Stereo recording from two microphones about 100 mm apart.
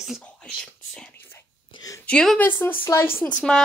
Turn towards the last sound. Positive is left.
turn(degrees=10)  # may be behind; listen again after turning